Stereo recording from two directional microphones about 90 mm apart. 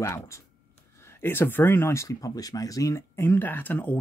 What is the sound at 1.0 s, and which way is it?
Speech, 25° left (ahead or behind).